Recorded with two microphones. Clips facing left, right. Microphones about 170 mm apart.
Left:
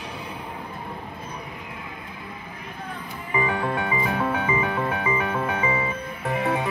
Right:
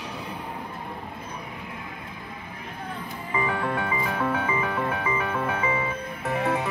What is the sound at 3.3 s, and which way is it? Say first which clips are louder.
Music: left 2 dB; 10° left (ahead or behind).